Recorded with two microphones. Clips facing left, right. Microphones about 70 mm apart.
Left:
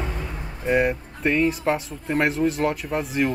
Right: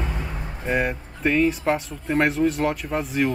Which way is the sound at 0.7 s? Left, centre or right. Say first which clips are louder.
Left 3 dB; centre.